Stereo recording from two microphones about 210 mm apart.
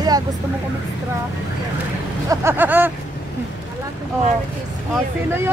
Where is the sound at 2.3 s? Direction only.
15° right (ahead or behind).